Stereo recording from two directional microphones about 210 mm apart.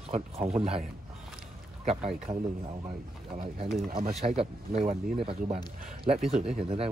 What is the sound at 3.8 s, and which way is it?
Speech, 45° right (ahead or behind).